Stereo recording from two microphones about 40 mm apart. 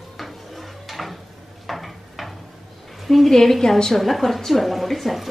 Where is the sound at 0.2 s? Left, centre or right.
Centre.